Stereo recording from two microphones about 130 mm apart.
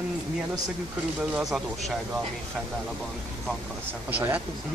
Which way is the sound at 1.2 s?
5° right (ahead or behind).